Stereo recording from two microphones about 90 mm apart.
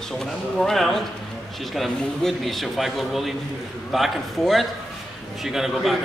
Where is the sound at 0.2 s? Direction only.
5° left (ahead or behind).